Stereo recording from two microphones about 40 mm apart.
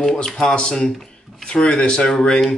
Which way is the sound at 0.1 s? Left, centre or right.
Centre.